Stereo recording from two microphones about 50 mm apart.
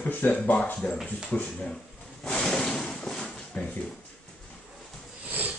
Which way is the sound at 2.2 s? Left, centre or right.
Centre.